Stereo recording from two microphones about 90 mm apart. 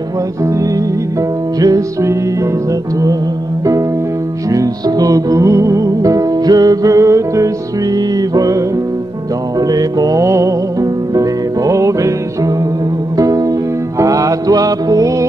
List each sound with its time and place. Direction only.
1.6 s music: 40° right (ahead or behind)
4.5 s music: 40° right (ahead or behind)
10.2 s music: 35° right (ahead or behind)